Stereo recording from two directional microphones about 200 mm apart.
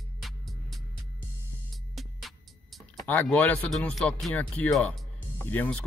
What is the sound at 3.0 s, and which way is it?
Speech, 10° left (ahead or behind).